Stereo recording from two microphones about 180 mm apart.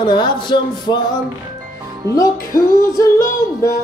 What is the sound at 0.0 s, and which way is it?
Music, 25° left (ahead or behind).